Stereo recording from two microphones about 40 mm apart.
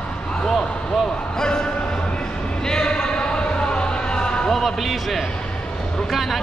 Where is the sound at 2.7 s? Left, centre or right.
Centre.